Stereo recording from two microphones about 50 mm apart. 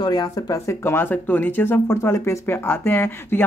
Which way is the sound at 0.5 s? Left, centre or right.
Left.